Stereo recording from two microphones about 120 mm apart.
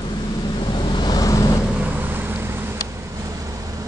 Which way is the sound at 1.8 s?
15° right (ahead or behind).